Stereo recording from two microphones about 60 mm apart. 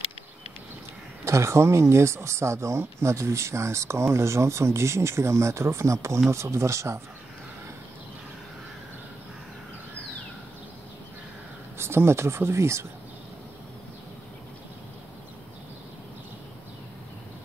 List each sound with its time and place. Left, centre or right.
1.2 s speech: right
11.8 s speech: right